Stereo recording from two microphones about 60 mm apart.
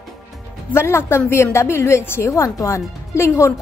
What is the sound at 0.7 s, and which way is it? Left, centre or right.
A woman's voice, left.